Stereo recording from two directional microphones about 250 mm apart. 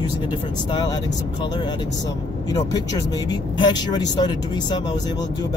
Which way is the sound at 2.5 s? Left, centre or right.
Centre.